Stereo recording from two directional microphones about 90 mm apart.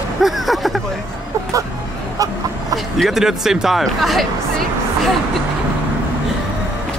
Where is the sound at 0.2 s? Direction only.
Centre (ahead or behind).